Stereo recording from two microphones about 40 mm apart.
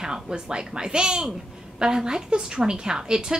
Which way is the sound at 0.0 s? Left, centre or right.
Centre.